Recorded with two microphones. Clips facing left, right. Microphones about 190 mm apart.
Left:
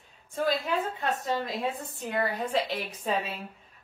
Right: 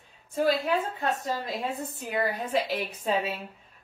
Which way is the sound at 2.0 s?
5° right (ahead or behind).